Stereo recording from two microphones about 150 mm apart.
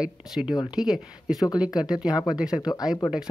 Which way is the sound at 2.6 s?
25° left (ahead or behind).